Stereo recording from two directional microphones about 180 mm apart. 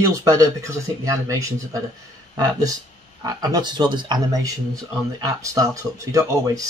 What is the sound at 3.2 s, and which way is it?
Speech, 20° right (ahead or behind).